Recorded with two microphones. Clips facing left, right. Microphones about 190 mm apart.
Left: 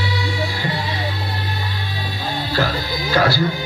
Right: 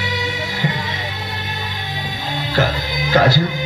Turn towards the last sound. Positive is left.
turn(degrees=-20)  # may be behind; listen again after turning